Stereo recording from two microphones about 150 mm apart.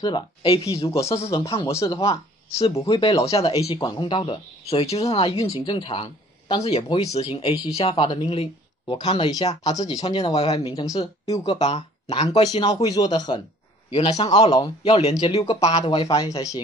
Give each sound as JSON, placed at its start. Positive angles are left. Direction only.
{"t": 0.0, "sound": "speech", "side_deg": 30}
{"t": 0.8, "sound": "speech", "side_deg": 20}
{"t": 1.9, "sound": "speech", "side_deg": 40}
{"t": 3.6, "sound": "speech", "side_deg": 30}
{"t": 9.3, "sound": "speech", "side_deg": 25}
{"t": 9.9, "sound": "speech", "side_deg": 40}
{"t": 10.7, "sound": "speech", "side_deg": 25}
{"t": 11.4, "sound": "speech", "side_deg": 45}
{"t": 13.8, "sound": "speech", "side_deg": 35}
{"t": 15.6, "sound": "speech", "side_deg": 25}